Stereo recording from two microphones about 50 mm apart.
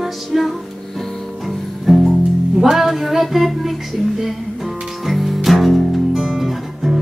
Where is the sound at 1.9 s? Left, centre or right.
Centre.